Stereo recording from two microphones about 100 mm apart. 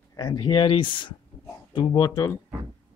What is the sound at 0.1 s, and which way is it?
Speech, 40° left (ahead or behind).